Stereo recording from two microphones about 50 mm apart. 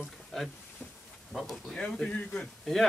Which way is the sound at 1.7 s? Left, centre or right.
Centre.